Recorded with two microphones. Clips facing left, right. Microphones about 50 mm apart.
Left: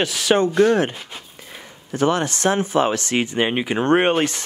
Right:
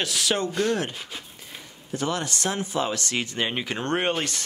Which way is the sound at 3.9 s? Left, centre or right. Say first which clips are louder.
Left 8 dB; left.